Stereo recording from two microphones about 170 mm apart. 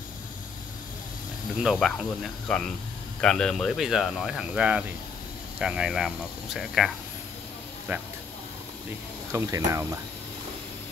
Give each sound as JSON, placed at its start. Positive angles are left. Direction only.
{"t": 1.6, "sound": "speech", "side_deg": 0}
{"t": 7.9, "sound": "speech", "side_deg": -10}
{"t": 9.3, "sound": "speech", "side_deg": -20}